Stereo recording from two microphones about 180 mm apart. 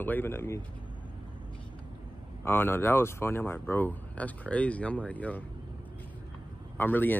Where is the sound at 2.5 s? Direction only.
10° left (ahead or behind).